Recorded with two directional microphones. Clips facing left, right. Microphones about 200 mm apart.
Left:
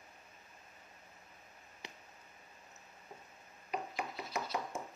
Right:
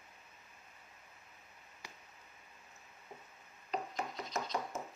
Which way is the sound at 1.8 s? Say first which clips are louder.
Left 3 dB; 20° left (ahead or behind).